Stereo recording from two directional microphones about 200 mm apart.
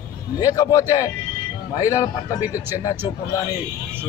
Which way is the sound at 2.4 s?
10° right (ahead or behind).